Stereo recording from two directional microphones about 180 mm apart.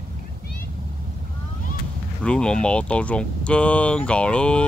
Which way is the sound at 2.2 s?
5° left (ahead or behind).